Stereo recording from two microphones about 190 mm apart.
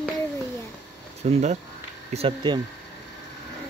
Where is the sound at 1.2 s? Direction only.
35° right (ahead or behind).